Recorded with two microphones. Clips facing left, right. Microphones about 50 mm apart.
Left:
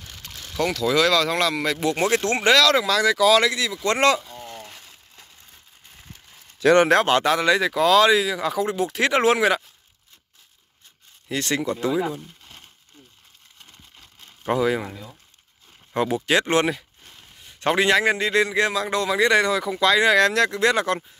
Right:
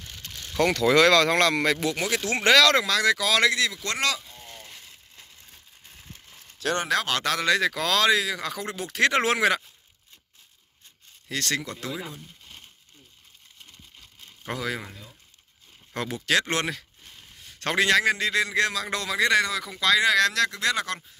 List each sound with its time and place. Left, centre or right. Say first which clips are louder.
0.3 s boat: right 1 dB; centre
0.9 s speech: right 1 dB; centre
1.8 s speech: left 5 dB; left
2.4 s speech: even; centre
3.8 s speech: left 8 dB; left
4.6 s a sound: left 5 dB; left
7.1 s speech: left 6 dB; centre
11.2 s a man's voice: left 5 dB; centre
14.4 s a man's voice: left 9 dB; centre